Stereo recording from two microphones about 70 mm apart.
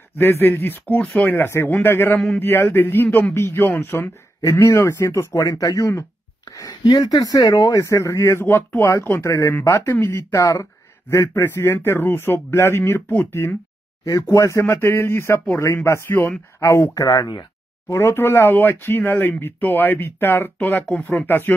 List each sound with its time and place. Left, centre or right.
0.2 s speech: left
0.8 s speech: left
4.4 s speech: left
6.7 s speech: left
10.4 s speech: left
11.4 s speech: left
14.3 s speech: left
16.1 s speech: left
16.5 s speech: left
16.9 s speech: left
17.8 s speech: left